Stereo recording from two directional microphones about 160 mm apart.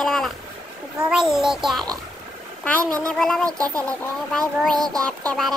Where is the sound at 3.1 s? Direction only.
5° left (ahead or behind).